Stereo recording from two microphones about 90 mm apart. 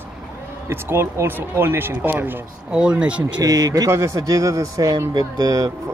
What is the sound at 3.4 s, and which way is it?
Speech, 45° right (ahead or behind).